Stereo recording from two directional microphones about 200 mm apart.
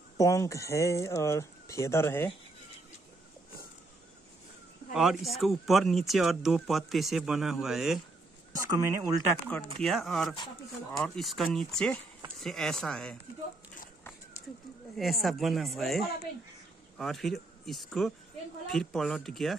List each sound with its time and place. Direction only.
0.2 s speech: 15° left (ahead or behind)
4.9 s speech: centre (ahead or behind)
8.6 s speech: 20° right (ahead or behind)
9.8 s speech: centre (ahead or behind)
15.0 s speech: centre (ahead or behind)